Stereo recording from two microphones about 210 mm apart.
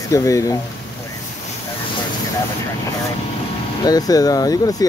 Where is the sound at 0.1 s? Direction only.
15° left (ahead or behind).